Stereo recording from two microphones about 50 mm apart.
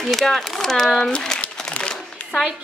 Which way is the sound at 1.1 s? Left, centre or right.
Centre.